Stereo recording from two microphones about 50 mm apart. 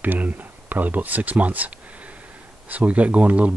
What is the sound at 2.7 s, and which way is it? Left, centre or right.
Speech, right.